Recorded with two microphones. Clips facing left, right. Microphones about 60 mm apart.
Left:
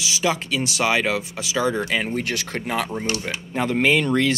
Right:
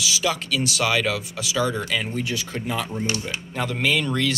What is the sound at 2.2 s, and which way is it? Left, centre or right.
Speech, left.